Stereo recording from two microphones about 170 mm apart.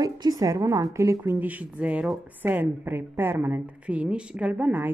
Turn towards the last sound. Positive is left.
turn(degrees=-10)  # may be behind; listen again after turning